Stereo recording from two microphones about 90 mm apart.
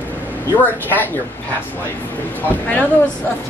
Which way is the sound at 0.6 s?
20° left (ahead or behind).